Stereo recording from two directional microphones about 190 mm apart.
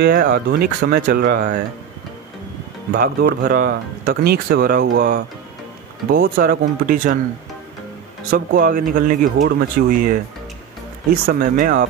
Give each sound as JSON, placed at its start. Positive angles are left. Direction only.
{"t": 0.0, "sound": "speech", "side_deg": -50}
{"t": 2.9, "sound": "speech", "side_deg": -50}
{"t": 8.3, "sound": "speech", "side_deg": -45}